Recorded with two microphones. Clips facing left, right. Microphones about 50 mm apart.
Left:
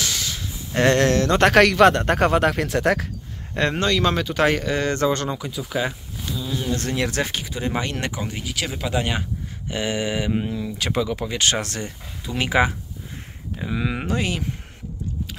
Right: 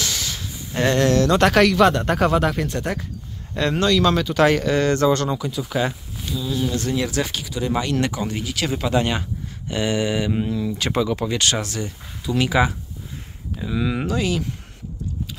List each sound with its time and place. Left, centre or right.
0.0 s a sound: centre
0.7 s speech: left
1.1 s speech: left
1.5 s speech: left
3.7 s speech: left; by 6.4 s centre
6.4 s speech: left
6.7 s speech: left
7.2 s speech: left
8.2 s speech: centre
10.8 s speech: centre
11.3 s speech: left
11.6 s speech: left
12.3 s speech: left
14.0 s speech: left